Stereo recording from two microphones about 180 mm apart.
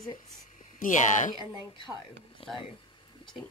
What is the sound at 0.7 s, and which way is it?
Speech, 45° left (ahead or behind).